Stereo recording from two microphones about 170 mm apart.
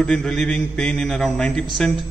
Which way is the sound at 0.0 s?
5° left (ahead or behind).